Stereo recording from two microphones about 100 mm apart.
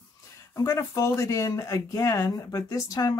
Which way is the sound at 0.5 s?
30° left (ahead or behind).